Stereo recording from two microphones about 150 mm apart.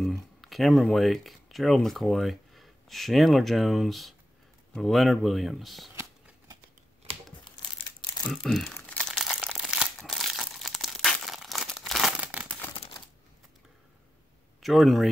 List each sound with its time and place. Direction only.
0.0 s speech: centre (ahead or behind)
5.9 s a sound: 20° right (ahead or behind)
8.3 s speech: centre (ahead or behind)
8.7 s crumpling: 5° left (ahead or behind)
14.6 s speech: centre (ahead or behind)